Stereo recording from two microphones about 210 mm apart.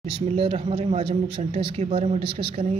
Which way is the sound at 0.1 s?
25° right (ahead or behind).